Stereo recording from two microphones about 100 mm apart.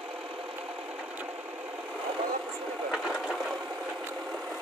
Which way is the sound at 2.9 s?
Centre (ahead or behind).